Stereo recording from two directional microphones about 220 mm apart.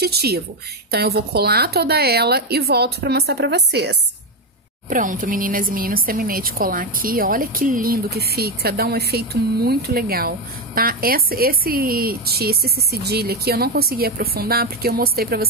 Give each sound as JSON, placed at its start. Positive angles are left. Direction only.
{"t": 0.0, "sound": "a woman's voice", "side_deg": -45}
{"t": 4.8, "sound": "a woman's voice", "side_deg": -35}